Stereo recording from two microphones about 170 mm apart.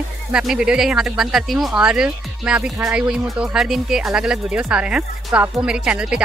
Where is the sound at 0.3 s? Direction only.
5° right (ahead or behind).